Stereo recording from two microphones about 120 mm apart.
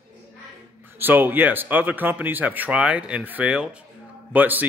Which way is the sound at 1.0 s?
15° right (ahead or behind).